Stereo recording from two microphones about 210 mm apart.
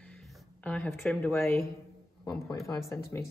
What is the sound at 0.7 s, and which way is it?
Speech, 5° left (ahead or behind).